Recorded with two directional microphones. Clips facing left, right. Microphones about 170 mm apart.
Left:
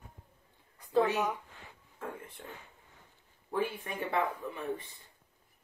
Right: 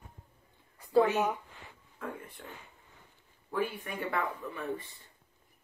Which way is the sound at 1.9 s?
25° left (ahead or behind).